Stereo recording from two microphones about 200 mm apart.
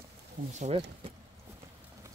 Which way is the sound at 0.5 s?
35° right (ahead or behind).